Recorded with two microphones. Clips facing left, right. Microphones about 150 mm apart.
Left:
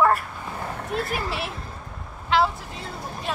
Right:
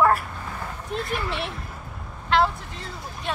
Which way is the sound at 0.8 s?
55° left (ahead or behind).